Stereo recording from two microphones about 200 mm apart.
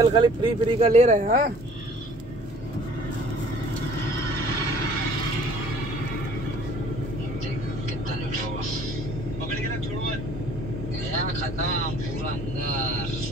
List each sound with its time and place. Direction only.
0.1 s speech: 25° right (ahead or behind)
0.8 s speech: 35° right (ahead or behind)